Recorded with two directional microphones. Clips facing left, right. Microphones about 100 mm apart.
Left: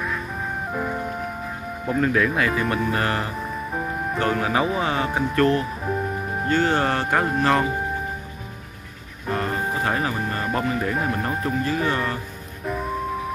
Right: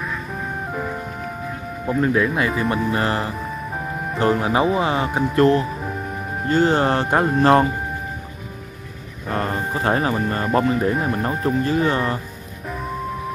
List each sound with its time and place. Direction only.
0.7 s music: 5° left (ahead or behind)
2.0 s speech: 15° right (ahead or behind)
2.9 s speech: 25° right (ahead or behind); by 5.2 s 10° right (ahead or behind)
5.3 s speech: 25° right (ahead or behind)
9.3 s speech: 30° right (ahead or behind)